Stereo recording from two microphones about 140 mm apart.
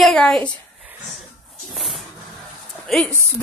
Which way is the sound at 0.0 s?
5° left (ahead or behind).